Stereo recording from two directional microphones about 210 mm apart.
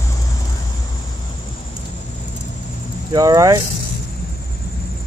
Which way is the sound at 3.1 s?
15° right (ahead or behind).